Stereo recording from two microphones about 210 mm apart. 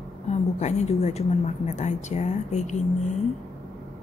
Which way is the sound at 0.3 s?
35° left (ahead or behind).